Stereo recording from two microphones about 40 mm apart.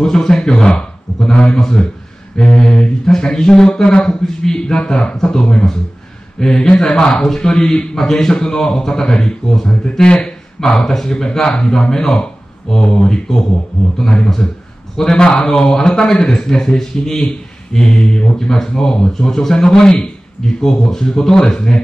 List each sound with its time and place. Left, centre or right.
0.0 s a man's voice: centre